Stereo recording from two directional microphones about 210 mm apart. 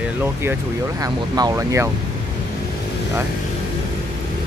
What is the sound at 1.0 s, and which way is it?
Speech, 15° right (ahead or behind).